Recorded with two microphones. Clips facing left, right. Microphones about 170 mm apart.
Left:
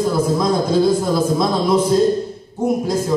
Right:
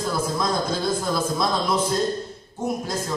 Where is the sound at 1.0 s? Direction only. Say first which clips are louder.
Left 7 dB; 20° left (ahead or behind).